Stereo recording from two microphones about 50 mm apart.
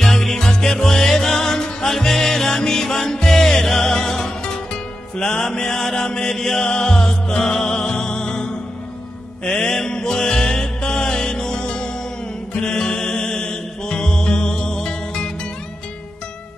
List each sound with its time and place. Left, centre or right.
0.0 s music: centre